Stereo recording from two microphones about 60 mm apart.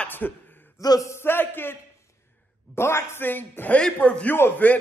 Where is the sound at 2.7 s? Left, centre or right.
Left.